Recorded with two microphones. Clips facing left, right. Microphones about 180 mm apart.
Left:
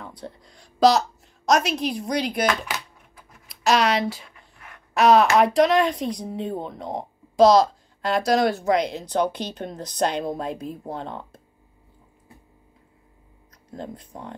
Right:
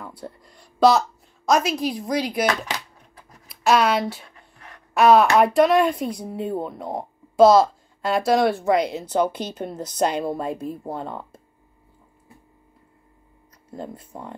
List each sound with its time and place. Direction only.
0.0 s speech: 5° right (ahead or behind)
2.7 s music: 40° right (ahead or behind)
3.4 s speech: 5° right (ahead or behind)
13.7 s speech: 5° right (ahead or behind)